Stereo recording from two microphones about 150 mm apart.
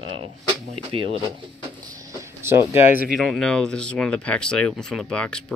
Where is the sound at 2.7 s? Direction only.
15° right (ahead or behind).